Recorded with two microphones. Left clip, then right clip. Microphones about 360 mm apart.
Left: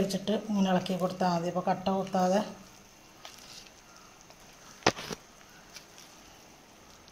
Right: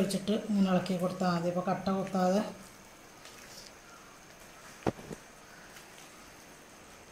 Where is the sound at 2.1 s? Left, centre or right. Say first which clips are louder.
Left 2 dB; centre.